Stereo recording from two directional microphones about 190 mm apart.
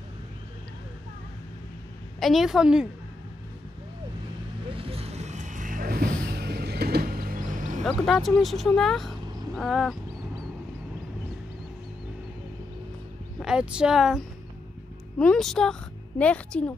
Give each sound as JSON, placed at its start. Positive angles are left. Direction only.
{"t": 2.1, "sound": "speech", "side_deg": 0}
{"t": 4.7, "sound": "vehicle", "side_deg": -30}
{"t": 7.8, "sound": "speech", "side_deg": 0}
{"t": 13.4, "sound": "a woman's voice", "side_deg": -5}